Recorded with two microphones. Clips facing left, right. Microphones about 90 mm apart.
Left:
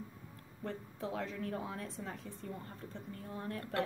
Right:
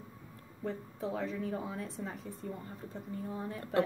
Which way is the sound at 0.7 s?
Centre (ahead or behind).